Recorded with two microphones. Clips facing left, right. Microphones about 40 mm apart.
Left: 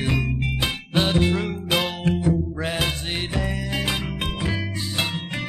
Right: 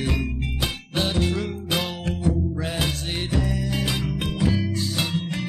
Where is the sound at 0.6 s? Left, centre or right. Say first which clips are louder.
Left 2 dB; left.